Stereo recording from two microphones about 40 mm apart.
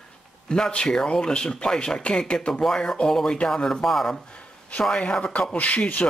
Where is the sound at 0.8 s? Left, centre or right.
Left; by 4.2 s centre.